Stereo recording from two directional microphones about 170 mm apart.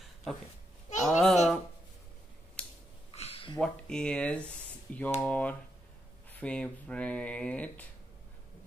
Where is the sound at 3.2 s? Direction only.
35° left (ahead or behind).